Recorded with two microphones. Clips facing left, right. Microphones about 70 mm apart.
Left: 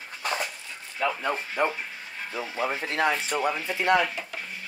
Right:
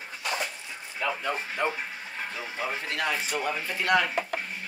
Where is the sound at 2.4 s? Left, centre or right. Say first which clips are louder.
Left 5 dB; centre.